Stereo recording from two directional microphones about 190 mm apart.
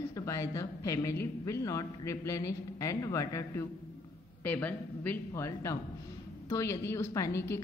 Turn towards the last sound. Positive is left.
turn(degrees=15)  # may be behind; listen again after turning